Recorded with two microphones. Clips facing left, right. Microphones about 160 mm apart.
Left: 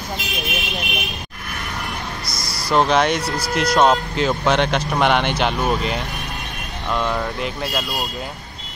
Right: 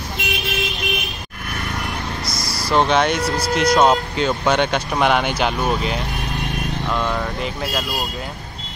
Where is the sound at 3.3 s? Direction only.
Centre (ahead or behind).